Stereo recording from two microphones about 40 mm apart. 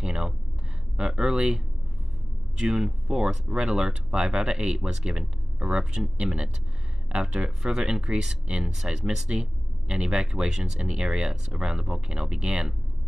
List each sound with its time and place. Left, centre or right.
0.0 s a sound: right
0.9 s speech: right
9.4 s speech: right